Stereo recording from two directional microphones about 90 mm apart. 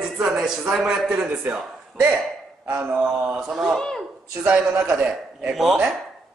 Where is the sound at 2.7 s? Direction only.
15° right (ahead or behind).